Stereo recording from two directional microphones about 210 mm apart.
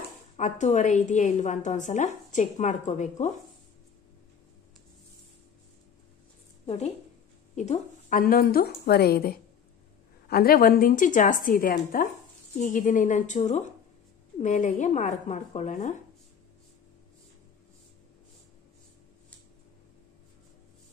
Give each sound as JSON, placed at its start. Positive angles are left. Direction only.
{"t": 0.4, "sound": "a woman's voice", "side_deg": 35}
{"t": 6.6, "sound": "a woman's voice", "side_deg": 30}